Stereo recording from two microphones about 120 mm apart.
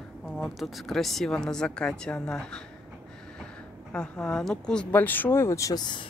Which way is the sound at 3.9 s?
10° left (ahead or behind).